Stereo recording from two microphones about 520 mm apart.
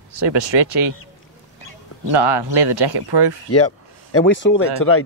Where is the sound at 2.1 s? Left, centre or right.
Right.